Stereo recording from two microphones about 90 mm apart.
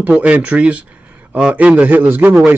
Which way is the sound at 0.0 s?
15° right (ahead or behind).